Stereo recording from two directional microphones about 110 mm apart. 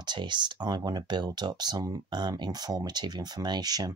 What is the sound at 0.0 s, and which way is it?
Speech, 45° right (ahead or behind).